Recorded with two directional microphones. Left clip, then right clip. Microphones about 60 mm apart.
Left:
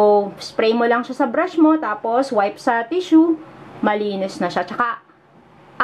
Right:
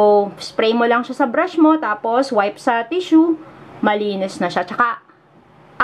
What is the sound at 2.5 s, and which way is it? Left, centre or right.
Speech, centre.